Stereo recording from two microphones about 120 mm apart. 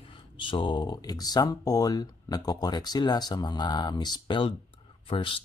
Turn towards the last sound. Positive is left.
turn(degrees=45)  # may be behind; listen again after turning